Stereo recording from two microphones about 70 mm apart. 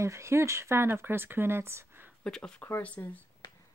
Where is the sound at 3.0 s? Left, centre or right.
Left.